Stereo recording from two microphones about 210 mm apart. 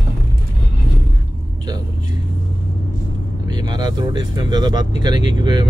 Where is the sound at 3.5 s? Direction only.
20° right (ahead or behind).